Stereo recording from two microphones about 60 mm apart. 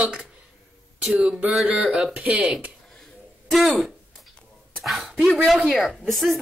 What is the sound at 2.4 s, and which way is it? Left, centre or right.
Speech, centre.